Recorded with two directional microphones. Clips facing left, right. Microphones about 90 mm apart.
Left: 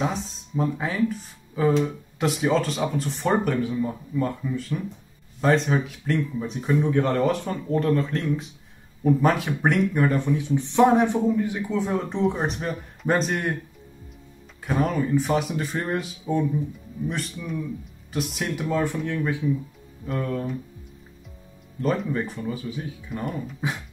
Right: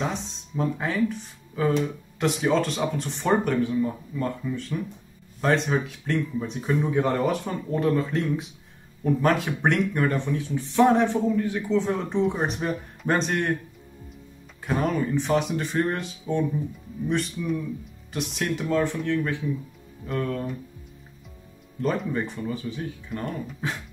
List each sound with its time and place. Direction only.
0.0 s speech: 5° left (ahead or behind)
10.3 s speech: 20° left (ahead or behind); by 13.5 s centre (ahead or behind)
14.6 s speech: centre (ahead or behind)
21.7 s speech: centre (ahead or behind)